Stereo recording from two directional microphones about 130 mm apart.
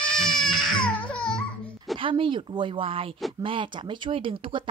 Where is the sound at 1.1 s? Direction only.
5° left (ahead or behind).